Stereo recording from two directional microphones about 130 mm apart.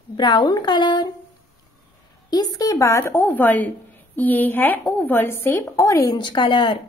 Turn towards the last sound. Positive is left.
turn(degrees=40)  # may be behind; listen again after turning